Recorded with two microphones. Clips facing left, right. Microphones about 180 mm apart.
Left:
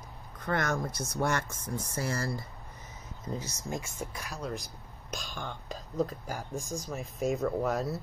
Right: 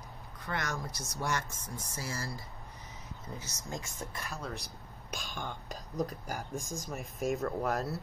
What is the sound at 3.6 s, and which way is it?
Speech, 20° left (ahead or behind).